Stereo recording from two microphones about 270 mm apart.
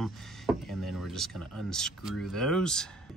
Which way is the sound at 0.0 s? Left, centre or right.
Centre.